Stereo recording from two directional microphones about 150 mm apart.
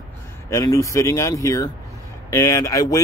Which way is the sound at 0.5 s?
20° left (ahead or behind).